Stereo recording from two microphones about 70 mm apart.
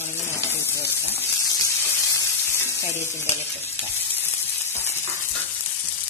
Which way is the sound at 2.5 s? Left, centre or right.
Left.